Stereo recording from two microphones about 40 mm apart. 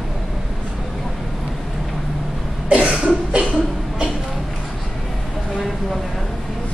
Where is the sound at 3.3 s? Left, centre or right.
Right.